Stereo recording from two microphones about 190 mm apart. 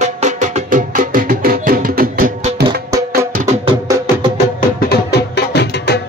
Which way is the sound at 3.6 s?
15° right (ahead or behind).